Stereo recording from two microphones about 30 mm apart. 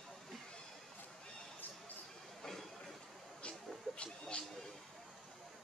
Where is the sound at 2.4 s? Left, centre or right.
Centre.